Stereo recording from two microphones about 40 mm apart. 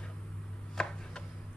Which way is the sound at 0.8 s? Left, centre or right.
Centre.